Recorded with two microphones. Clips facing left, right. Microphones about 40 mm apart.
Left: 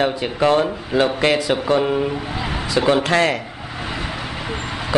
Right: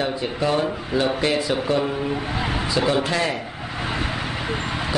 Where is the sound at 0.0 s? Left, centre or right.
Left.